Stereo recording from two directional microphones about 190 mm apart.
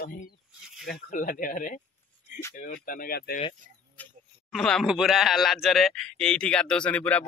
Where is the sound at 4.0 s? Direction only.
Centre (ahead or behind).